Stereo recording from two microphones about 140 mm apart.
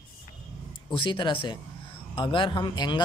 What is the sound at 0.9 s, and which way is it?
Speech, 35° left (ahead or behind).